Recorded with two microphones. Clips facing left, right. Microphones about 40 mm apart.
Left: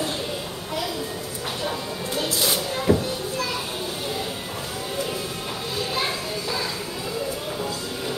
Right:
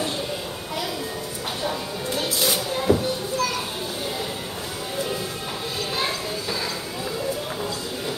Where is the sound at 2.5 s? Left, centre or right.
Centre.